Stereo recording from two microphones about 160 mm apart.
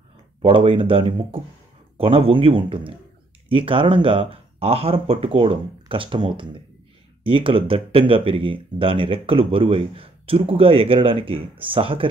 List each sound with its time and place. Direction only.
0.4 s speech: 35° right (ahead or behind)